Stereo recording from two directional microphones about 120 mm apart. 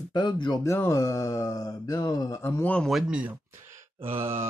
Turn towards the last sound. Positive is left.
turn(degrees=-50)  # may be behind; listen again after turning